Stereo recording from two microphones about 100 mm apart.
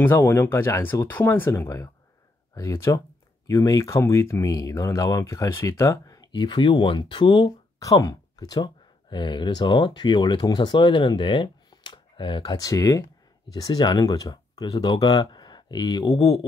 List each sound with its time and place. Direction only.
0.0 s speech: 25° left (ahead or behind)
6.3 s speech: 50° left (ahead or behind)
7.8 s speech: 35° left (ahead or behind)
9.1 s speech: 50° left (ahead or behind)
12.5 s speech: 35° left (ahead or behind)